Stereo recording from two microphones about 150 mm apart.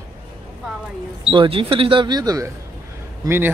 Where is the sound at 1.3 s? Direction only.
35° right (ahead or behind).